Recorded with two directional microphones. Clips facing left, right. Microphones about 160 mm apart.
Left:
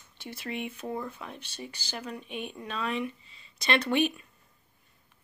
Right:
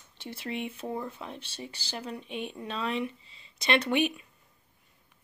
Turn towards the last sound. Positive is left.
turn(degrees=-20)  # may be behind; listen again after turning